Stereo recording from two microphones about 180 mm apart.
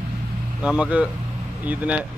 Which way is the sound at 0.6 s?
5° right (ahead or behind).